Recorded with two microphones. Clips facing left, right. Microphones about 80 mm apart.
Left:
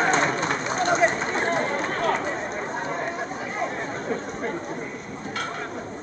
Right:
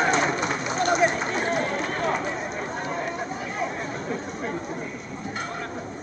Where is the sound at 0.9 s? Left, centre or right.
Left.